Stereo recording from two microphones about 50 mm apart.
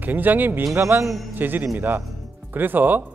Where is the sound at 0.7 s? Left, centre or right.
Right.